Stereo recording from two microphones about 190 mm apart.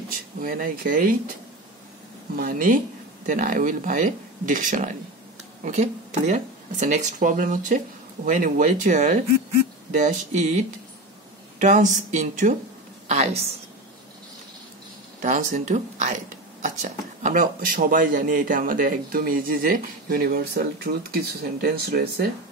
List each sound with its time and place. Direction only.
0.4 s speech: 50° right (ahead or behind)
2.3 s speech: 50° right (ahead or behind)
11.6 s speech: 40° right (ahead or behind)
15.2 s speech: 40° right (ahead or behind); by 22.3 s 55° right (ahead or behind)